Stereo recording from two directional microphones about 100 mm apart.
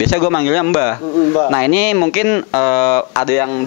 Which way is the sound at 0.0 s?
15° left (ahead or behind).